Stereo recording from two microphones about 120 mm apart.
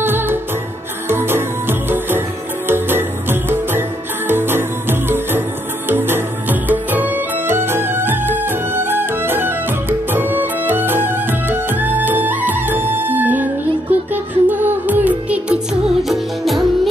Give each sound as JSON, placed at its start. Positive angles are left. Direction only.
{"t": 0.0, "sound": "music", "side_deg": -20}
{"t": 16.0, "sound": "music", "side_deg": 0}